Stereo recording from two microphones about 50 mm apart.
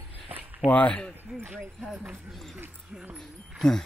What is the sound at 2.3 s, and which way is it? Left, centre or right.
Speech, centre.